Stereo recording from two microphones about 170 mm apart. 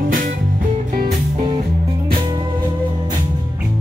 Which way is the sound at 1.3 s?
30° right (ahead or behind).